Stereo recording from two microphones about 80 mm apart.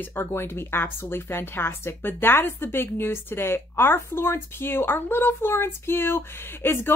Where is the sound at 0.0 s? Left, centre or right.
Left.